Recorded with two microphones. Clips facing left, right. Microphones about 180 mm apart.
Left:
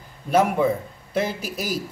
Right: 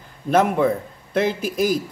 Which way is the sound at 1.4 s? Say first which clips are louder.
Right 8 dB; 50° right (ahead or behind).